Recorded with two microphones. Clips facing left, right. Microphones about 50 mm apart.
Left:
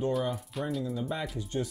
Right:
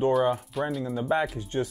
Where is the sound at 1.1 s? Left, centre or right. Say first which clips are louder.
Right 7 dB; right.